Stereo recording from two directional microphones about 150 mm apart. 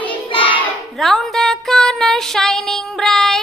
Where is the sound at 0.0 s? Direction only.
35° left (ahead or behind).